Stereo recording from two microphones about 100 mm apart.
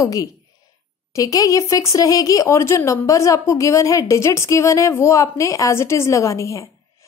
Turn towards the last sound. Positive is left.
turn(degrees=30)  # may be behind; listen again after turning